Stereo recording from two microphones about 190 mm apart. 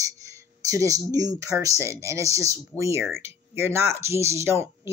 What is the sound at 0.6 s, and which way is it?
Speech, 15° right (ahead or behind).